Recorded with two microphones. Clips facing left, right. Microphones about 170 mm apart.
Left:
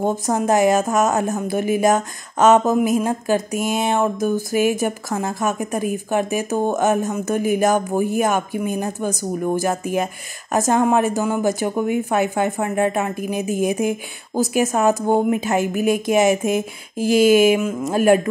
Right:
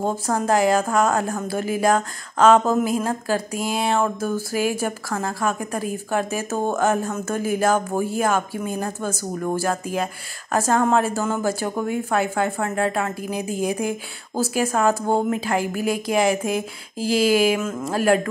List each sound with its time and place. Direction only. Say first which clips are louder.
0.0 s a woman's voice: left 3 dB; 20° left (ahead or behind)